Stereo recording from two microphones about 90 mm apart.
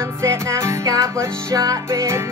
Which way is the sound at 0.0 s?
30° right (ahead or behind).